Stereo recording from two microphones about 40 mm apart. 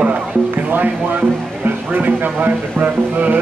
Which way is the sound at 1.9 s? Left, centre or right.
Right.